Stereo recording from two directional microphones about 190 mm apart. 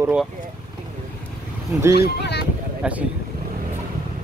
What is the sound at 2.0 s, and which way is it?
Speech, 60° left (ahead or behind).